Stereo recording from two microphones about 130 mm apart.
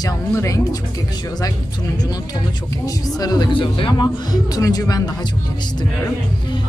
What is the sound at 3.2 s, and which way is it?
Speech, 30° left (ahead or behind).